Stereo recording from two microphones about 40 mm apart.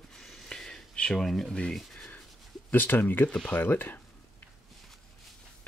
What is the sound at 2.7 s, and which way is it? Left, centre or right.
Speech, left.